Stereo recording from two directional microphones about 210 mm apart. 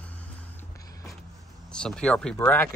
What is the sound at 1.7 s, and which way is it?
Speech, 5° left (ahead or behind).